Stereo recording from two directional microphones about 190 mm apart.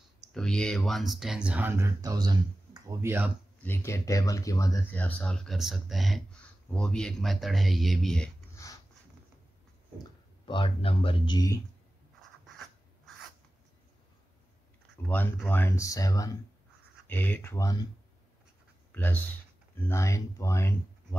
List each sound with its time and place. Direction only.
0.3 s speech: 5° left (ahead or behind)
3.6 s speech: 10° left (ahead or behind)
8.6 s a sound: 15° left (ahead or behind)
10.4 s speech: 25° left (ahead or behind)
15.0 s speech: 10° left (ahead or behind)
18.9 s speech: 10° left (ahead or behind)